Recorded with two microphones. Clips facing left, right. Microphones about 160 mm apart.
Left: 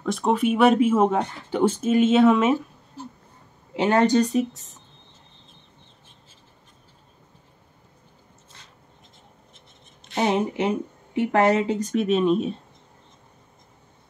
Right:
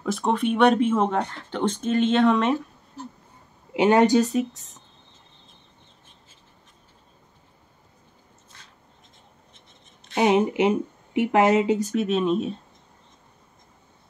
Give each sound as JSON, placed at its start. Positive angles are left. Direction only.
{"t": 0.0, "sound": "speech", "side_deg": 0}
{"t": 3.7, "sound": "speech", "side_deg": -15}
{"t": 4.2, "sound": "speech", "side_deg": 0}
{"t": 10.1, "sound": "speech", "side_deg": -15}
{"t": 11.9, "sound": "speech", "side_deg": 0}